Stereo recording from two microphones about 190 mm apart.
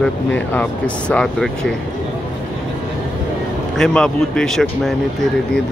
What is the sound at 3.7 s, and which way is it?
Speech, 5° left (ahead or behind).